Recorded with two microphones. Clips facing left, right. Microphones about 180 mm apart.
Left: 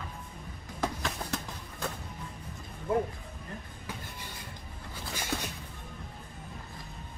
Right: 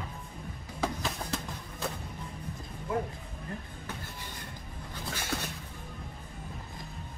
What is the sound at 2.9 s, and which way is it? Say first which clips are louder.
Music: left 4 dB; 30° left (ahead or behind).